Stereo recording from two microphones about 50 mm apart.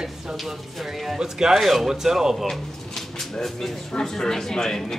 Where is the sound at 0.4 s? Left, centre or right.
Centre.